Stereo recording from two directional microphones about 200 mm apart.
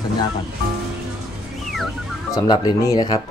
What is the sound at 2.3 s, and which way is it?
Speech, 20° left (ahead or behind).